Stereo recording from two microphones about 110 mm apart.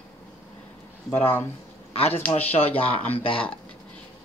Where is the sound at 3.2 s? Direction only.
55° left (ahead or behind).